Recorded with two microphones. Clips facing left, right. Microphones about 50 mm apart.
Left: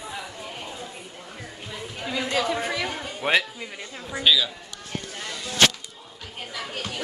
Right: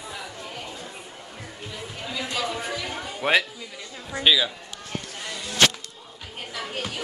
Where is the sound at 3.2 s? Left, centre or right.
Centre.